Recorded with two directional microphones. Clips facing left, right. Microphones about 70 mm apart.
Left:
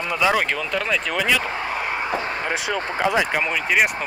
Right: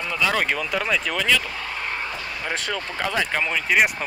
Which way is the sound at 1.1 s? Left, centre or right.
Centre.